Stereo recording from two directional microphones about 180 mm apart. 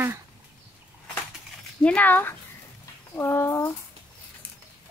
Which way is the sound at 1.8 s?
10° left (ahead or behind).